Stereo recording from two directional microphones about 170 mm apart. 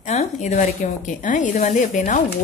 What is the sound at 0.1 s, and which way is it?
A woman's voice, 45° left (ahead or behind).